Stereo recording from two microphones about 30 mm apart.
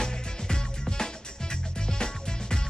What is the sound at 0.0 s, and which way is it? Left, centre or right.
Music, left.